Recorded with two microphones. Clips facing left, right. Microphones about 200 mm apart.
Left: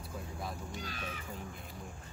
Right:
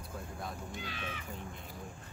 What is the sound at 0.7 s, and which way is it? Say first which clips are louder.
Speech: even; 40° left (ahead or behind).